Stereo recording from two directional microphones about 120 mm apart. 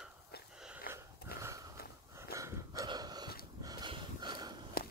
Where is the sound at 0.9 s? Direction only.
25° right (ahead or behind).